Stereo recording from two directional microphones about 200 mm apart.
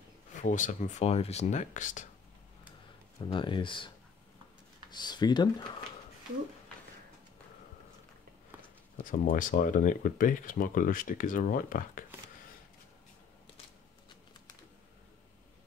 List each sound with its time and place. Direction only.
0.4 s speech: 40° left (ahead or behind)
3.2 s speech: 25° left (ahead or behind)
4.9 s speech: 20° left (ahead or behind)
9.0 s speech: 45° left (ahead or behind)